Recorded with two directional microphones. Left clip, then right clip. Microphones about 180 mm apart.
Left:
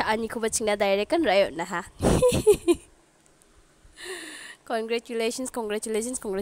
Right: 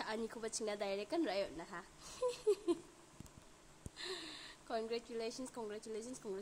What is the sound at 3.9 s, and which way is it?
A woman's voice, 40° left (ahead or behind).